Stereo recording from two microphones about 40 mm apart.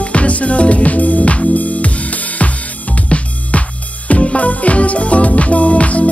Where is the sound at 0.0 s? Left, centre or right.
Left.